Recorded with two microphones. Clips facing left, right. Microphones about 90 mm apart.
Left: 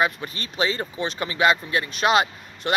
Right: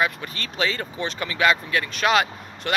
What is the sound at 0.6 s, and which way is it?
Speech, 25° left (ahead or behind).